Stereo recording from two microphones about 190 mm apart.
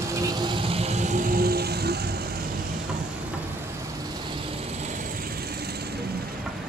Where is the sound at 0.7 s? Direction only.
35° right (ahead or behind); by 1.9 s 55° right (ahead or behind).